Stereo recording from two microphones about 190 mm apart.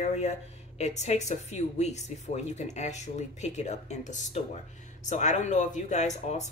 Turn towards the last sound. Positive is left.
turn(degrees=35)  # may be behind; listen again after turning